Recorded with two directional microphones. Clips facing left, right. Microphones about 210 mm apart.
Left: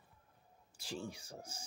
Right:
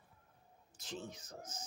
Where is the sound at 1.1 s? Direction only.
10° left (ahead or behind).